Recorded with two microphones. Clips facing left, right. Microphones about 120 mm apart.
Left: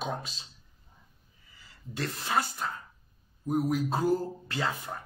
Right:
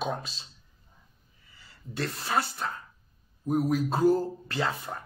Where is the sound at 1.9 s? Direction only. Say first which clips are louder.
Right 1 dB; 35° right (ahead or behind).